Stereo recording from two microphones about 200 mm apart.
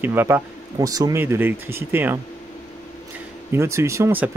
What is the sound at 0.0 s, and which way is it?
Speech, 10° right (ahead or behind).